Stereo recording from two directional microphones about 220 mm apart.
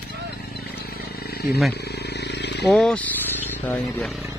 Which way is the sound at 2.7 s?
5° left (ahead or behind).